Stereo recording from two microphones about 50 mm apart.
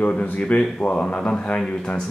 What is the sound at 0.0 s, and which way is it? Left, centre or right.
Speech, left.